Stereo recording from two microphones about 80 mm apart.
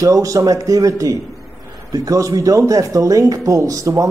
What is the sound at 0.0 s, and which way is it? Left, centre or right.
Speech, right.